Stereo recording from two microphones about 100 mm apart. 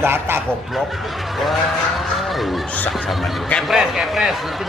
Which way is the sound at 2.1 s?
Centre (ahead or behind).